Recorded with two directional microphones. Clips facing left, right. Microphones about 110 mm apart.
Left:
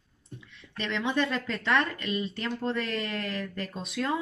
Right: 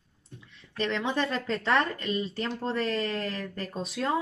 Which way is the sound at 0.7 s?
35° right (ahead or behind).